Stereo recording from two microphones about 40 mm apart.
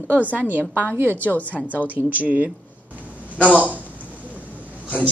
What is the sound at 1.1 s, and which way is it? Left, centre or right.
Speech, left.